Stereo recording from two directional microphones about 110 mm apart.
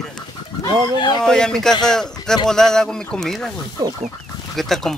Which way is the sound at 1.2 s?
5° left (ahead or behind).